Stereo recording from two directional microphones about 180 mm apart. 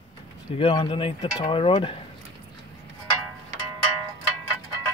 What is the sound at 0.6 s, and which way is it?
Speech, 25° left (ahead or behind).